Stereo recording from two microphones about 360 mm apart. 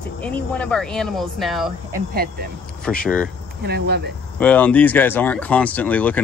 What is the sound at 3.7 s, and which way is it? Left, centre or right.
Speech, right.